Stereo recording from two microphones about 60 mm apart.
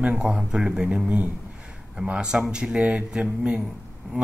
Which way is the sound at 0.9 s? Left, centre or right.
Right.